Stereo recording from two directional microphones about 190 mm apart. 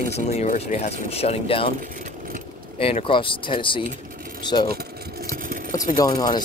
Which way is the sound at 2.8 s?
30° left (ahead or behind).